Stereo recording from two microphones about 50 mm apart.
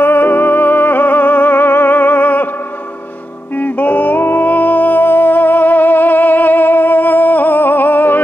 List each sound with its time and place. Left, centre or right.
0.0 s music: left
3.5 s music: left